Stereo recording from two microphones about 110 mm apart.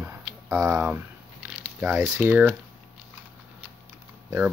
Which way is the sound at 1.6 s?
10° right (ahead or behind).